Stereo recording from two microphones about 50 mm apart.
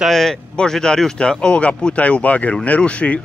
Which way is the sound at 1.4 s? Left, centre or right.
Left.